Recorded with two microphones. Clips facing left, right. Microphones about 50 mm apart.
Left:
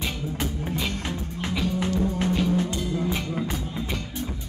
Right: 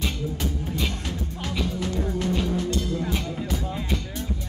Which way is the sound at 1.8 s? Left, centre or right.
Left.